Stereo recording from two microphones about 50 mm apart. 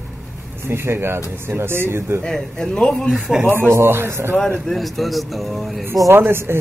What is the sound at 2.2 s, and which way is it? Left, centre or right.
Speech, centre.